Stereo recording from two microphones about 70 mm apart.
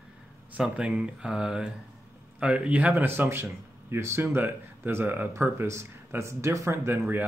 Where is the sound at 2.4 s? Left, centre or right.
Centre.